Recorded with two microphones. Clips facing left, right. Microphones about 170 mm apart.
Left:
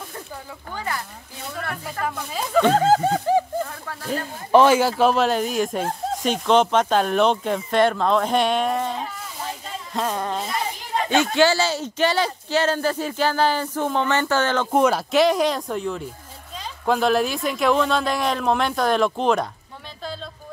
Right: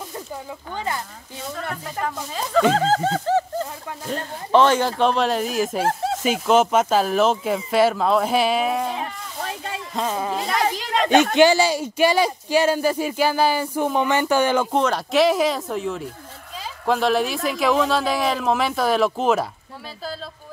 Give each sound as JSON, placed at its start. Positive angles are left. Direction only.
{"t": 0.7, "sound": "speech", "side_deg": -20}
{"t": 2.0, "sound": "speech", "side_deg": 5}
{"t": 9.0, "sound": "a sound", "side_deg": -70}
{"t": 9.9, "sound": "a sound", "side_deg": -5}
{"t": 10.4, "sound": "children playing", "side_deg": -85}
{"t": 11.3, "sound": "speech", "side_deg": -15}
{"t": 14.7, "sound": "speech", "side_deg": 10}